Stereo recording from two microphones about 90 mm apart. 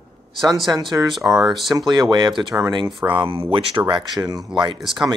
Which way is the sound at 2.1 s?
60° right (ahead or behind).